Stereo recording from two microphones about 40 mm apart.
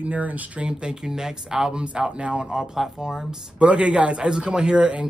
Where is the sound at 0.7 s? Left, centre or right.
Right.